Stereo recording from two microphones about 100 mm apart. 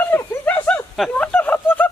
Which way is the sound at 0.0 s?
20° left (ahead or behind).